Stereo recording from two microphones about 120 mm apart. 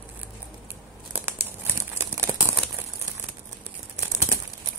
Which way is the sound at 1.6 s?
20° right (ahead or behind).